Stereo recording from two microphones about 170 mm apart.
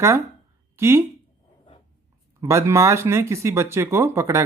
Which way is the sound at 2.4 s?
15° right (ahead or behind).